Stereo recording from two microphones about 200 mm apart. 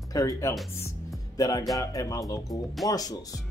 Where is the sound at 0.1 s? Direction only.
15° left (ahead or behind).